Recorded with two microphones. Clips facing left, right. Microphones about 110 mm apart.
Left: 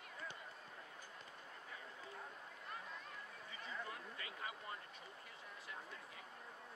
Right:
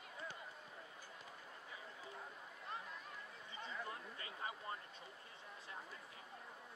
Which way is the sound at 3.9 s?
30° right (ahead or behind).